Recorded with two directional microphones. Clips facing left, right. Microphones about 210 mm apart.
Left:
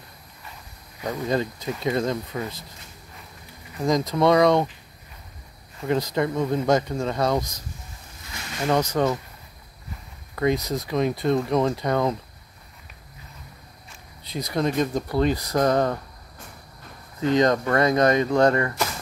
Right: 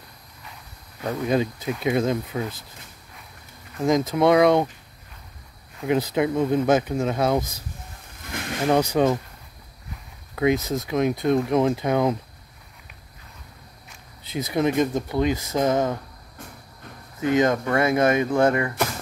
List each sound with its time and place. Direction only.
1.2 s speech: 10° right (ahead or behind)
3.7 s speech: 5° right (ahead or behind)
5.8 s speech: 5° right (ahead or behind)
8.2 s a sound: 55° right (ahead or behind)
8.6 s speech: 10° right (ahead or behind)
10.3 s speech: 5° right (ahead or behind)
14.3 s speech: 5° right (ahead or behind)
15.1 s speech: 15° right (ahead or behind)
15.6 s speech: 5° right (ahead or behind)
17.4 s speech: 5° right (ahead or behind)